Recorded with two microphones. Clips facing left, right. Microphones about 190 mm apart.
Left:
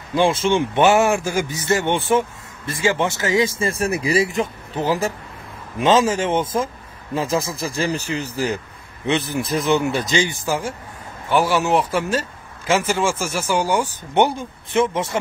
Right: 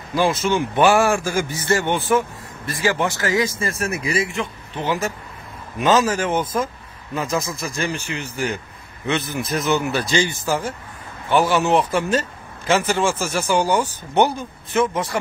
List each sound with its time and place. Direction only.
0.1 s a man's voice: 25° left (ahead or behind)
2.0 s a man's voice: 30° left (ahead or behind)
9.7 s a man's voice: 25° left (ahead or behind); by 13.8 s 10° left (ahead or behind)
14.1 s a man's voice: 25° left (ahead or behind)